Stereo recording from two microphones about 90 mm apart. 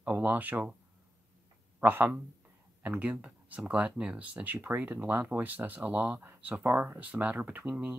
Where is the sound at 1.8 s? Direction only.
20° right (ahead or behind).